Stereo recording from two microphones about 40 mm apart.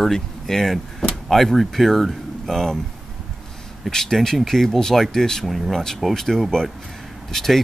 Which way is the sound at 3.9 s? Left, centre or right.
Centre.